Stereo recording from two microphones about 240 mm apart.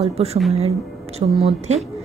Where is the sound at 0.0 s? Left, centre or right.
Right.